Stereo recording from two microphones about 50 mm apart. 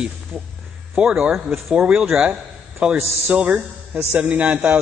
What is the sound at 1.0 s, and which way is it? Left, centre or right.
Speech, right.